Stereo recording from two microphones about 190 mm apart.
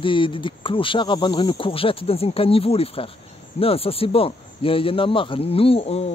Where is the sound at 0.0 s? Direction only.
25° left (ahead or behind).